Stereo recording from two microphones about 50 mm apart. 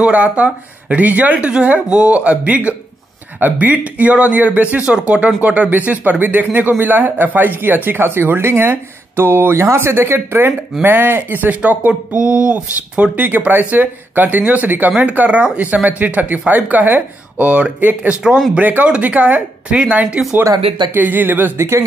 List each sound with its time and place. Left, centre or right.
0.0 s a man's voice: right
9.7 s speech: right
12.3 s speech: right
13.1 s a man's voice: right
18.2 s speech: centre
18.6 s a man's voice: right
20.9 s a man's voice: right
21.5 s speech: right